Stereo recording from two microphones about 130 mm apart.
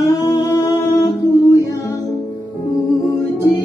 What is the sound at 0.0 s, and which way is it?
Music, 25° left (ahead or behind).